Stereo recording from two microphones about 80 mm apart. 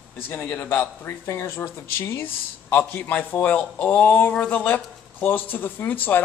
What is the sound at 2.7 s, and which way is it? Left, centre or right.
Speech, left.